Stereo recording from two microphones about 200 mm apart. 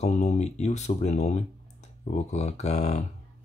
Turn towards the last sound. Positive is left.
turn(degrees=35)  # may be behind; listen again after turning